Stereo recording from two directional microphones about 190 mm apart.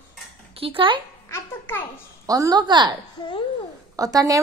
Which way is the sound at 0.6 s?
30° right (ahead or behind).